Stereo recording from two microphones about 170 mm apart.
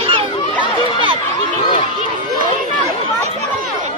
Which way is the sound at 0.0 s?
30° right (ahead or behind).